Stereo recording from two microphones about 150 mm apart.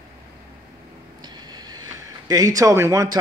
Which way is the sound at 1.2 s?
30° right (ahead or behind).